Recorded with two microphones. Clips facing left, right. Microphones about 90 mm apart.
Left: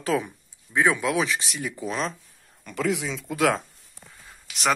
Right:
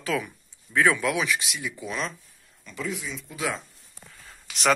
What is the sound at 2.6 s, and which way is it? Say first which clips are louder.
Speech: left 7 dB; 70° left (ahead or behind).